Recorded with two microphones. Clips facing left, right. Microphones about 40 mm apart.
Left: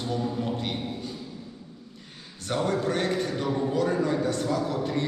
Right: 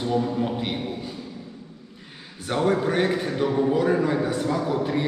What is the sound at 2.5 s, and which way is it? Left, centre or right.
A man's voice, centre.